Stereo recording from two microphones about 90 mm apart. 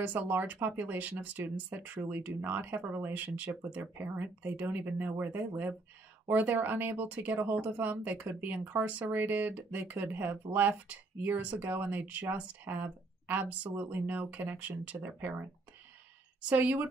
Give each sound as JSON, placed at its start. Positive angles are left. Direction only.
{"t": 0.0, "sound": "speech", "side_deg": -20}